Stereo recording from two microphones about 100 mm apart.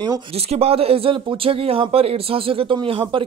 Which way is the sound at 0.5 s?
85° right.